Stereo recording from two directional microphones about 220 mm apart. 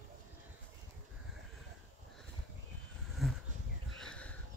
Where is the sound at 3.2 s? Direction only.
Centre (ahead or behind).